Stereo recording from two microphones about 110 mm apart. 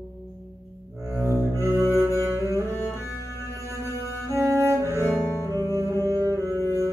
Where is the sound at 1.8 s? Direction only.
25° left (ahead or behind).